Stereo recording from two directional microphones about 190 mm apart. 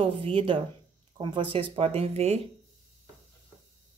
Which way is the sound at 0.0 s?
30° right (ahead or behind).